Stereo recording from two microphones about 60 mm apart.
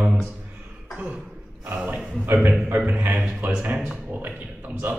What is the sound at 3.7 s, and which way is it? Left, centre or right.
Speech, centre.